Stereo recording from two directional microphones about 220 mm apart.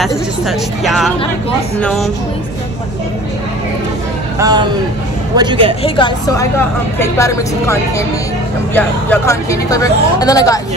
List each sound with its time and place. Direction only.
0.5 s speech: centre (ahead or behind)
4.4 s a man's voice: 20° right (ahead or behind)
5.8 s a woman's voice: 20° left (ahead or behind)